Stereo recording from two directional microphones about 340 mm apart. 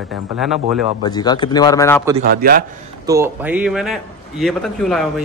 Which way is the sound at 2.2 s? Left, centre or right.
Right.